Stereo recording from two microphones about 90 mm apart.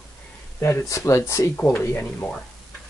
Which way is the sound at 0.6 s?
30° left (ahead or behind).